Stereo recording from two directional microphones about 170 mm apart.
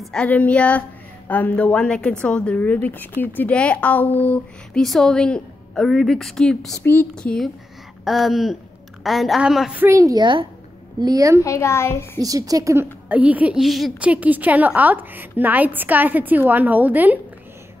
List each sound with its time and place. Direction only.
0.0 s a woman's voice: 5° left (ahead or behind); by 11.4 s 20° right (ahead or behind)
11.4 s a woman's voice: 15° left (ahead or behind)
12.2 s a woman's voice: 20° right (ahead or behind)